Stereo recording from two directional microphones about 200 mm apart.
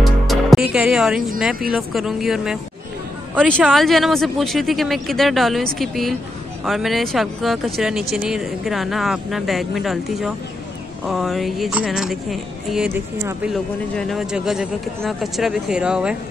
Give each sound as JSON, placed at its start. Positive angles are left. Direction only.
{"t": 0.0, "sound": "music", "side_deg": 0}
{"t": 1.7, "sound": "speech", "side_deg": 0}